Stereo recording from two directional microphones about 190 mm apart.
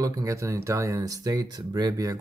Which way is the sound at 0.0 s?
20° right (ahead or behind).